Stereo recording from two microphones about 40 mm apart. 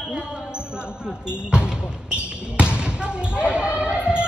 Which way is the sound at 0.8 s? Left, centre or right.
Right.